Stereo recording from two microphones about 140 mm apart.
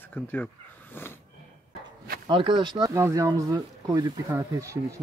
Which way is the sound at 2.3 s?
35° right (ahead or behind).